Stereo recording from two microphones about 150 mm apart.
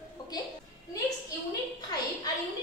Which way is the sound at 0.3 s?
25° left (ahead or behind).